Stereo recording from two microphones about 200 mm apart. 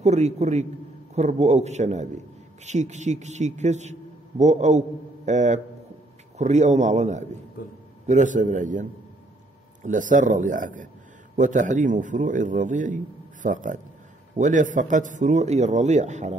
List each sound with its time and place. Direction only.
0.0 s a man's voice: 35° right (ahead or behind)
7.6 s a man's voice: 45° left (ahead or behind)
8.1 s a man's voice: 40° right (ahead or behind)
9.8 s a man's voice: 40° right (ahead or behind)